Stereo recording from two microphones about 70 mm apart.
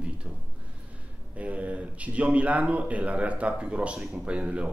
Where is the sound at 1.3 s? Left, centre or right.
Centre.